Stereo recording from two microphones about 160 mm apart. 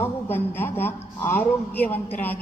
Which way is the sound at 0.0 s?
15° left (ahead or behind).